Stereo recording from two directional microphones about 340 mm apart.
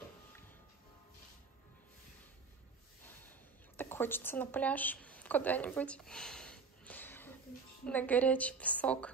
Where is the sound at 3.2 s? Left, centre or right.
Centre.